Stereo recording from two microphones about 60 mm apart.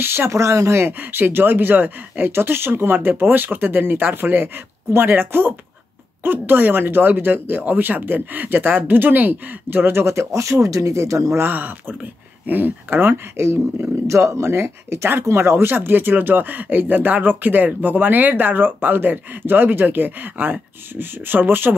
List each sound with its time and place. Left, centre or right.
0.0 s speech: right
0.3 s speech: right
11.3 s speech: right
14.0 s speech: right
15.7 s speech: right